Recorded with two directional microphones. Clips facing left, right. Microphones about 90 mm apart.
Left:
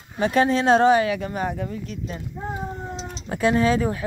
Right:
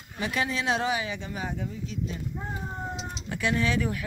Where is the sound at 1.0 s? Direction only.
60° left (ahead or behind).